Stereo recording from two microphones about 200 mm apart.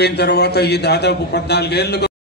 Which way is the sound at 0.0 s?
55° left (ahead or behind).